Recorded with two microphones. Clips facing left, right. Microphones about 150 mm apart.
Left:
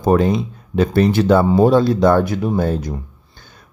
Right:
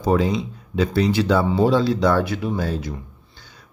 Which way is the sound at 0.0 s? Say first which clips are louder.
Left 4 dB; 55° left (ahead or behind).